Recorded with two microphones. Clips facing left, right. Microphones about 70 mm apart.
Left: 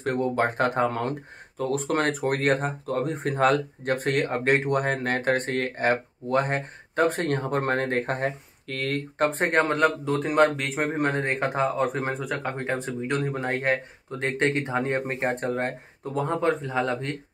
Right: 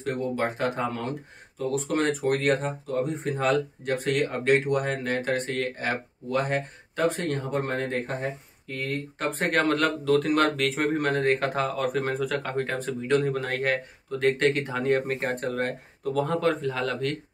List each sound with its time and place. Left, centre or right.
0.0 s speech: left
9.2 s speech: left